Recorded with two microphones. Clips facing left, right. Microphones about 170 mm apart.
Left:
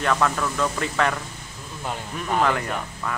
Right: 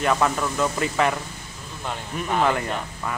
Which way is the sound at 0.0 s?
10° right (ahead or behind).